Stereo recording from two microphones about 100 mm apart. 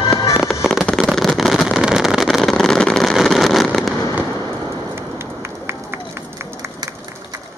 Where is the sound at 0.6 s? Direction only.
5° left (ahead or behind).